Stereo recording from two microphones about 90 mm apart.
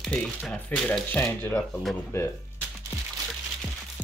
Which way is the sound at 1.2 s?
30° left (ahead or behind).